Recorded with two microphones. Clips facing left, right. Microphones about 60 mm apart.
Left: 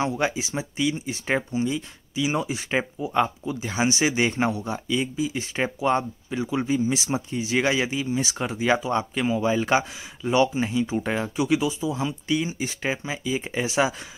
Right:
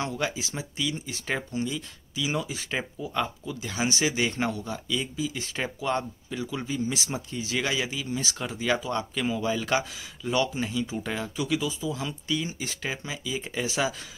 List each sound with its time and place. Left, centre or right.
0.0 s speech: centre